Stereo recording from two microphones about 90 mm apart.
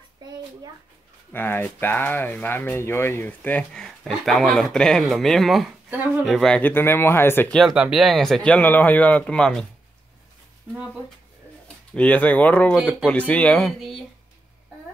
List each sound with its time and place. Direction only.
1.3 s speech: 20° left (ahead or behind)
3.8 s speech: 5° left (ahead or behind)
6.6 s speech: 25° left (ahead or behind)
7.7 s speech: 5° right (ahead or behind)
11.6 s speech: 15° left (ahead or behind)
13.6 s speech: 5° left (ahead or behind)